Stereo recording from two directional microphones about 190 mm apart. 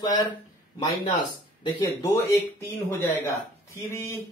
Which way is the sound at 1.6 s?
25° left (ahead or behind).